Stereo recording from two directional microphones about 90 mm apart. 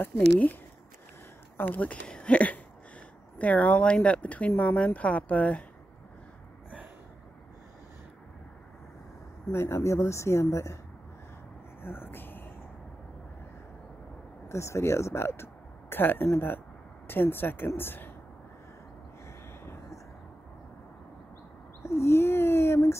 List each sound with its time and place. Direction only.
0.0 s speech: 20° left (ahead or behind)
1.6 s speech: 20° left (ahead or behind)
9.5 s speech: 30° left (ahead or behind)
11.8 s speech: 25° left (ahead or behind)
14.5 s speech: 30° left (ahead or behind)
19.6 s vehicle: 25° left (ahead or behind)
21.8 s speech: 30° left (ahead or behind)